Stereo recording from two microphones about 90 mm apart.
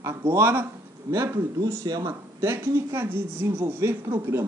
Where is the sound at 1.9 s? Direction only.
45° right (ahead or behind).